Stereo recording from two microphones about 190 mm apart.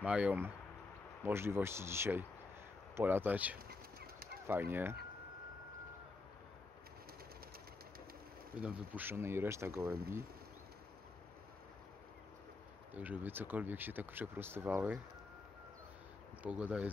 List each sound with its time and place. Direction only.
0.0 s speech: 5° right (ahead or behind)
3.5 s bird: 55° right (ahead or behind)
4.5 s speech: 10° right (ahead or behind)
8.5 s speech: 5° right (ahead or behind)
12.9 s speech: 10° right (ahead or behind)
16.4 s speech: 5° right (ahead or behind)